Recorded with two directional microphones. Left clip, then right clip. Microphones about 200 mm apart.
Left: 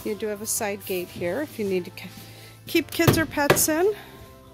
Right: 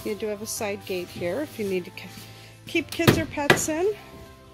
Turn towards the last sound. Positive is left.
turn(degrees=20)  # may be behind; listen again after turning